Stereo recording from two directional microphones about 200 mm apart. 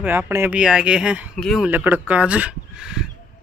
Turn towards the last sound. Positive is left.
turn(degrees=-5)  # may be behind; listen again after turning